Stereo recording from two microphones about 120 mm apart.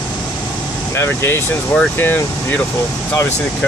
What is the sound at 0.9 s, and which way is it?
Speech, 20° left (ahead or behind).